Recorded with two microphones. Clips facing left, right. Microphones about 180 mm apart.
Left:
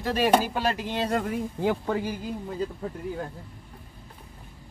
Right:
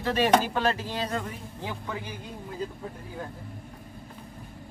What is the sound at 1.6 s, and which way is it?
Speech, 50° left (ahead or behind).